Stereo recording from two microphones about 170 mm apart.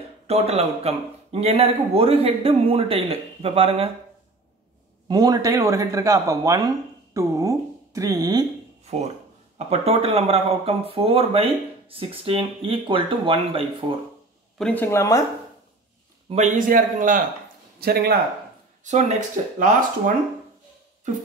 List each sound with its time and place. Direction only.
0.3 s speech: 35° right (ahead or behind)
5.0 s a man's voice: 20° right (ahead or behind)
8.8 s speech: 40° right (ahead or behind)
14.6 s speech: 10° left (ahead or behind)
16.3 s a man's voice: 45° right (ahead or behind)
17.7 s speech: 65° right (ahead or behind)
18.9 s a man's voice: 45° right (ahead or behind)